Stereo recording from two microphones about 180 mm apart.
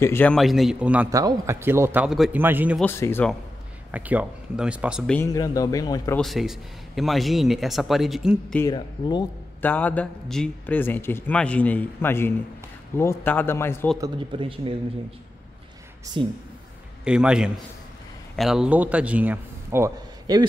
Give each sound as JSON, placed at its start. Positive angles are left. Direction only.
{"t": 0.0, "sound": "a man's voice", "side_deg": 10}
{"t": 1.1, "sound": "a man's voice", "side_deg": -15}
{"t": 2.8, "sound": "a man's voice", "side_deg": 15}
{"t": 3.9, "sound": "a man's voice", "side_deg": -10}
{"t": 5.1, "sound": "speech", "side_deg": 15}
{"t": 6.1, "sound": "a man's voice", "side_deg": 0}
{"t": 9.6, "sound": "a man's voice", "side_deg": 10}
{"t": 14.0, "sound": "speech", "side_deg": -30}
{"t": 16.1, "sound": "speech", "side_deg": -25}
{"t": 17.0, "sound": "a man's voice", "side_deg": -5}